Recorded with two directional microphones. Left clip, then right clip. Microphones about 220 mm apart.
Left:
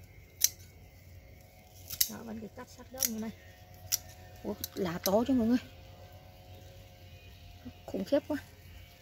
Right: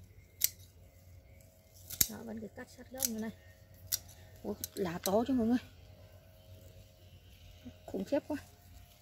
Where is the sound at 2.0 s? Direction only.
15° right (ahead or behind).